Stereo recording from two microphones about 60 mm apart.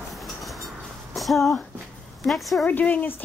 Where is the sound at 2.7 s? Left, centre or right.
Left.